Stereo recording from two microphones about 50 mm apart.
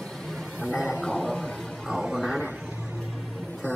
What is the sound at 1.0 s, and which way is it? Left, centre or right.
Music, centre.